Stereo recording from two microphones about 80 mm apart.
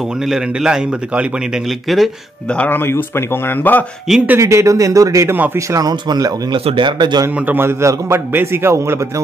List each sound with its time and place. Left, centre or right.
0.3 s a man's voice: centre
2.5 s speech: centre
2.8 s speech: left
4.4 s a man's voice: right
5.7 s speech: right
6.5 s speech: right
7.3 s a man's voice: right